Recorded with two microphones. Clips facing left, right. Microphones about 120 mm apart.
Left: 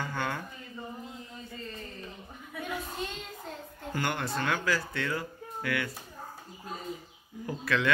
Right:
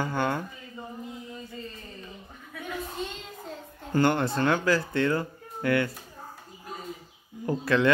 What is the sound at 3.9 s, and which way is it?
Speech, 35° right (ahead or behind).